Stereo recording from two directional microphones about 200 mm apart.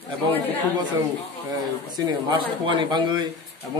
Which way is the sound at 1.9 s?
20° right (ahead or behind).